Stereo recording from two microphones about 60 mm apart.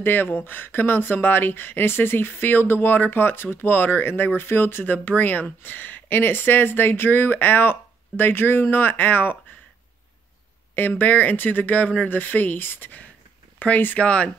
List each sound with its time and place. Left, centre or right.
0.0 s speech: left
10.8 s speech: left